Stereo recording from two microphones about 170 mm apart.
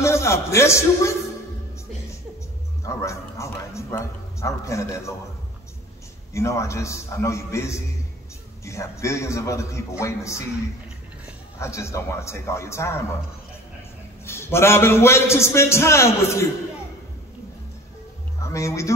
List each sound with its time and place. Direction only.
0.0 s a man's voice: 15° left (ahead or behind)
2.8 s bow-wow: 15° left (ahead or behind)
6.3 s a man's voice: 15° left (ahead or behind)
11.6 s a man's voice: 15° left (ahead or behind)
14.2 s a man's voice: 15° left (ahead or behind)
18.4 s speech: 15° left (ahead or behind)